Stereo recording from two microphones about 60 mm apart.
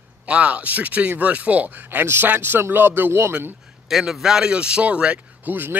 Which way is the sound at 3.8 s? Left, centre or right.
Centre.